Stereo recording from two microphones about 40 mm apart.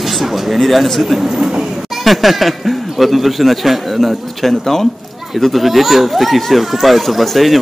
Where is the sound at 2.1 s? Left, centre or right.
Centre.